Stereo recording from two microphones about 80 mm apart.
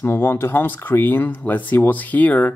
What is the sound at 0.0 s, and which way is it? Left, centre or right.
Speech, left.